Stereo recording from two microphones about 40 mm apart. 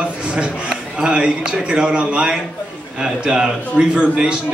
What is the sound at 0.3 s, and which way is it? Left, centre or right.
A man's voice, right.